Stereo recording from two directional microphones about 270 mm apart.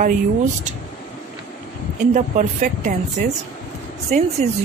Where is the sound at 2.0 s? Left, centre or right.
Right.